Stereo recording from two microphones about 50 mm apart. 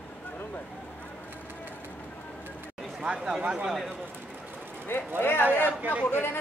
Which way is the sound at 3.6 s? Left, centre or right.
Centre.